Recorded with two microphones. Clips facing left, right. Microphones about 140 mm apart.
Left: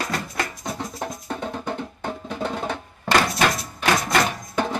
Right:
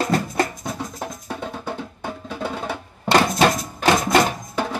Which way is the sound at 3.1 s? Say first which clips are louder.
Right 3 dB; 25° right (ahead or behind).